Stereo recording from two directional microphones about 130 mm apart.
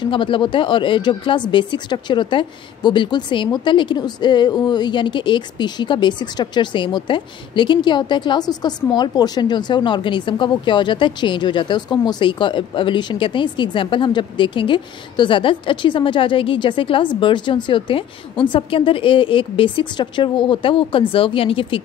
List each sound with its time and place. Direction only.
0.0 s speech: 40° left (ahead or behind)